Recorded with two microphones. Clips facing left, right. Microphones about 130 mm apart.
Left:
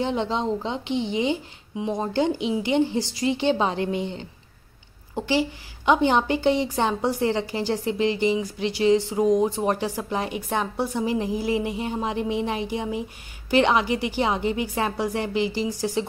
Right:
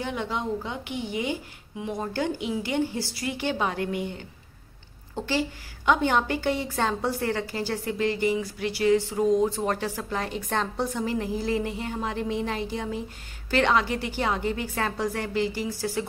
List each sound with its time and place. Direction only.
0.0 s a woman's voice: 25° left (ahead or behind)